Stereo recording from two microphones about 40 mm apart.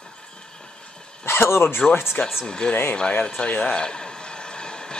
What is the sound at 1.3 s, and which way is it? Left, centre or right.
Speech, left.